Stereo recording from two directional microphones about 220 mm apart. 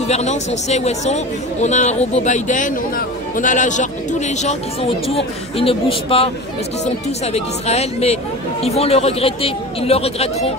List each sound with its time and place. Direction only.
0.1 s speech: 30° left (ahead or behind)
5.0 s speech: 25° left (ahead or behind)
7.3 s speech: 30° left (ahead or behind)